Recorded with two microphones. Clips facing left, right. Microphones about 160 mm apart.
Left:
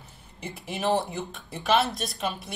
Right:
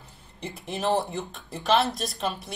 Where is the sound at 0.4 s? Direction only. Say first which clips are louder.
Right 1 dB; centre (ahead or behind).